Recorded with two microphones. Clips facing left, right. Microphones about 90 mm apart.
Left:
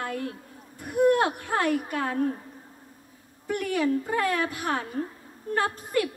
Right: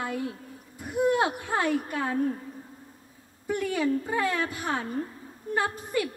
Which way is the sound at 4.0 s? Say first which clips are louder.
Left 1 dB; 15° right (ahead or behind).